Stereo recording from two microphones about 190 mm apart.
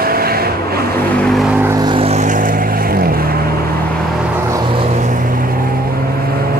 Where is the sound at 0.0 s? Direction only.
50° right (ahead or behind).